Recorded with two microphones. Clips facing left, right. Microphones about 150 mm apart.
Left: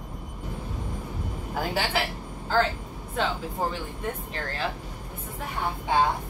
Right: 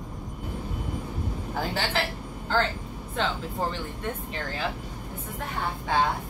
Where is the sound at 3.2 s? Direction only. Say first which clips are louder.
Left 1 dB; 5° left (ahead or behind).